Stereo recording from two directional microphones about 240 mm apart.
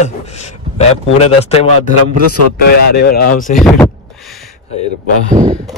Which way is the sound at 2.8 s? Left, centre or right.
Left.